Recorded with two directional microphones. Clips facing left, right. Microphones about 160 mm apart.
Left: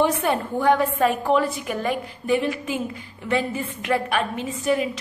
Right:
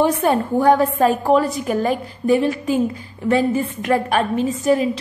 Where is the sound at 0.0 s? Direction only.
40° right (ahead or behind).